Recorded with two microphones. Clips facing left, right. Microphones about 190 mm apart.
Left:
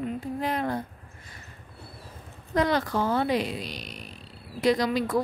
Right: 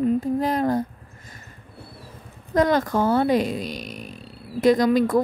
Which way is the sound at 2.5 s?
45° right (ahead or behind).